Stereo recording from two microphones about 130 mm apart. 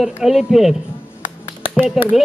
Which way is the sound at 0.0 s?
Centre (ahead or behind).